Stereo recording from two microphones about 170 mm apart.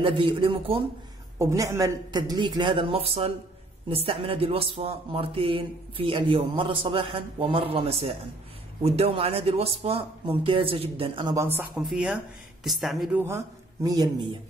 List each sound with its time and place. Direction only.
0.0 s speech: 30° right (ahead or behind)
1.4 s a woman's voice: 15° right (ahead or behind)
11.7 s speech: 5° right (ahead or behind)
13.8 s a woman's voice: 25° right (ahead or behind)